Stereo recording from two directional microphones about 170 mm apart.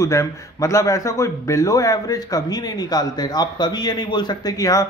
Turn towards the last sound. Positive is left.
turn(degrees=20)  # may be behind; listen again after turning